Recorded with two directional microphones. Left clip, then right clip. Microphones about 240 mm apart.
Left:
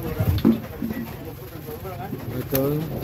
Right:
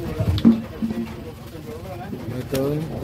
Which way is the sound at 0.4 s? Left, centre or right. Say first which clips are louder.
Right 3 dB; left.